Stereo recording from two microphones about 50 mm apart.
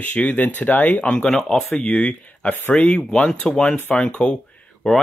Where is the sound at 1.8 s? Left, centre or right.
Left.